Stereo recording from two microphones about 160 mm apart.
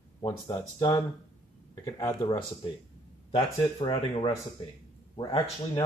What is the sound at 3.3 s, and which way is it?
Speech, 35° left (ahead or behind).